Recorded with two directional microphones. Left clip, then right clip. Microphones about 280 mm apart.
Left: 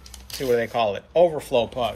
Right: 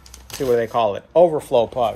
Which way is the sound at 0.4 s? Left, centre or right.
Right.